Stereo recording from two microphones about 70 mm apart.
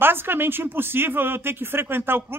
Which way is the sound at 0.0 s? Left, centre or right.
Right.